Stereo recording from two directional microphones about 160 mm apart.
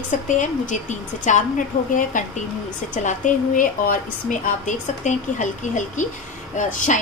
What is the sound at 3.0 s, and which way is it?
A woman's voice, 55° left (ahead or behind).